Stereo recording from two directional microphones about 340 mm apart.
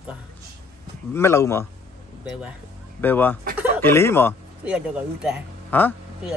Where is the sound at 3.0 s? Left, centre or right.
Centre.